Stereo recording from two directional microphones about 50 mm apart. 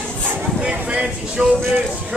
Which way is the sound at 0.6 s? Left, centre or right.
Right.